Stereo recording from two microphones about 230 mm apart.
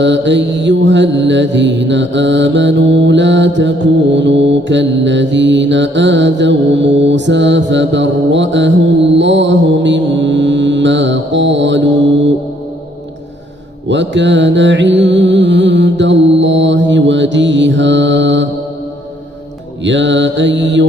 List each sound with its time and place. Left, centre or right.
0.0 s mantra: right
13.8 s music: right
19.8 s mantra: right